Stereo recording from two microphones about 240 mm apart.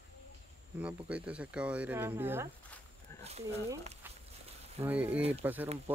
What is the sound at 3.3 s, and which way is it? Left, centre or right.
Speech, right.